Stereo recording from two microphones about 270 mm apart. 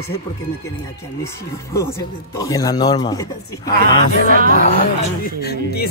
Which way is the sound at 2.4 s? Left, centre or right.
Centre.